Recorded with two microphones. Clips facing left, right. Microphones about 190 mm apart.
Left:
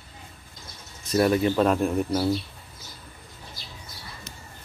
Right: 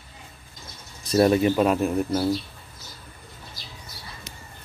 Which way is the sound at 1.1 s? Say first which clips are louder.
Right 3 dB; 25° right (ahead or behind).